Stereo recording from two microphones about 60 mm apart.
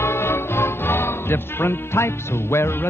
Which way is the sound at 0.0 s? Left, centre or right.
Left.